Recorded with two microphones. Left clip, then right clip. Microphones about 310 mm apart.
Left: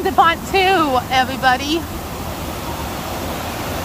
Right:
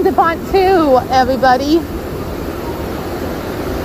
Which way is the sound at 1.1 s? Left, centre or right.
Centre.